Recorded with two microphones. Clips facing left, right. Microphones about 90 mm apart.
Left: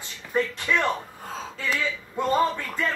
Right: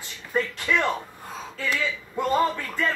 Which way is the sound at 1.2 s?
30° left (ahead or behind).